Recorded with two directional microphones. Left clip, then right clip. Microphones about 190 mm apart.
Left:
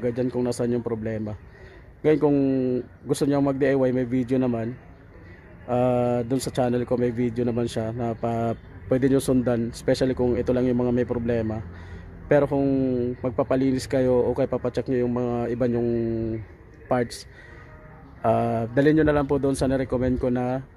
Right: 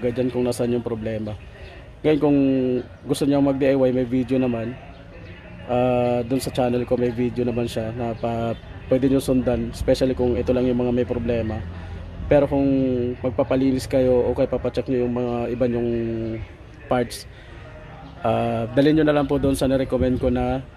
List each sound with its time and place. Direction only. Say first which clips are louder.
0.0 s speech: right 3 dB; 25° left (ahead or behind)
5.7 s speech: right 2 dB; 30° left (ahead or behind)
18.2 s speech: even; 25° left (ahead or behind)